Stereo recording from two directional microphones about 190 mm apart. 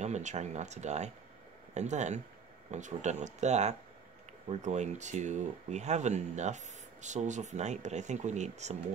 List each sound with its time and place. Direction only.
0.0 s speech: 40° right (ahead or behind)